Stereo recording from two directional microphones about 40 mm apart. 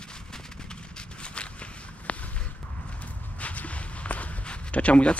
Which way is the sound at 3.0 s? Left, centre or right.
Left.